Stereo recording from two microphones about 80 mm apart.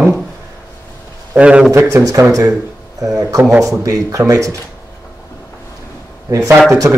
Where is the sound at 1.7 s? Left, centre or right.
Right.